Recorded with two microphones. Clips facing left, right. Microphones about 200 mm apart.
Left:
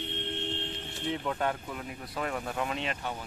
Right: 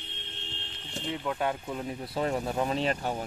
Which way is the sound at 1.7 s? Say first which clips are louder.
Right 5 dB; 30° right (ahead or behind).